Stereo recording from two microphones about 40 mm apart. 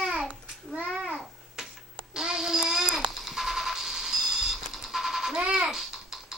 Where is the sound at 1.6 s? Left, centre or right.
Centre.